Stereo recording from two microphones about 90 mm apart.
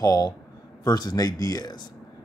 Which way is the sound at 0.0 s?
50° left (ahead or behind).